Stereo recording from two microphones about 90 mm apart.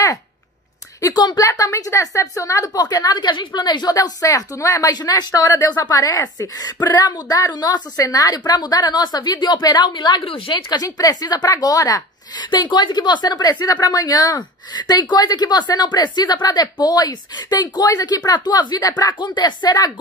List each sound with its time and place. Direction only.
1.0 s a woman's voice: 50° left (ahead or behind)
1.5 s a woman's voice: 35° left (ahead or behind)
3.3 s a woman's voice: 60° left (ahead or behind)
12.4 s a woman's voice: 60° left (ahead or behind); by 19.1 s 40° left (ahead or behind)
19.1 s a woman's voice: 55° left (ahead or behind)